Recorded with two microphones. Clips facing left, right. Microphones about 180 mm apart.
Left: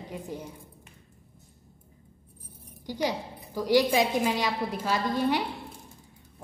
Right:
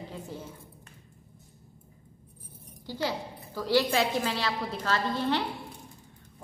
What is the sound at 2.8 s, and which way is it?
A woman's voice, 15° left (ahead or behind).